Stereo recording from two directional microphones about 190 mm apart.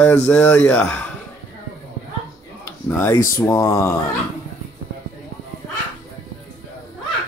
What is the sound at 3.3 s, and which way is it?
Speech, 15° left (ahead or behind).